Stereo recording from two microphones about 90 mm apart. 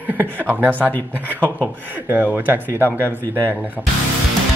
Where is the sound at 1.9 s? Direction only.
20° right (ahead or behind).